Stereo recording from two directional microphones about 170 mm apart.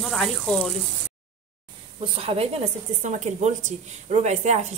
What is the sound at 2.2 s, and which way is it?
Speech, 35° right (ahead or behind).